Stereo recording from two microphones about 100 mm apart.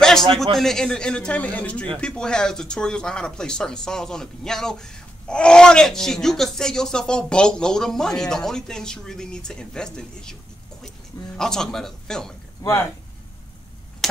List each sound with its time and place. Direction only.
0.0 s a sound: 5° left (ahead or behind)
0.6 s speech: 5° left (ahead or behind)
11.3 s speech: 5° left (ahead or behind)
12.6 s speech: 35° left (ahead or behind)